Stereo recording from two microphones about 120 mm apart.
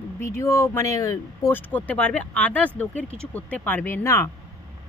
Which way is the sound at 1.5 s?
15° left (ahead or behind).